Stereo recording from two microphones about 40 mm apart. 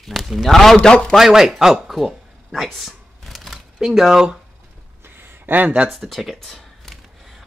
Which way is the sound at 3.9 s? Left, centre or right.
Centre.